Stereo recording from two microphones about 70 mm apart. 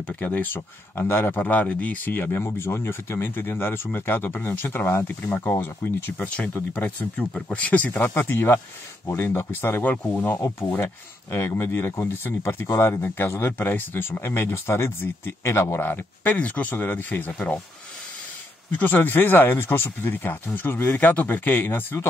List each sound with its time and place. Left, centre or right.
0.0 s speech: left
12.6 s speech: left
13.0 s speech: left
18.7 s speech: left